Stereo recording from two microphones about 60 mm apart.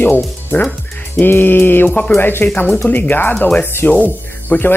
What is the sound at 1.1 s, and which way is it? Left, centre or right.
Speech, left.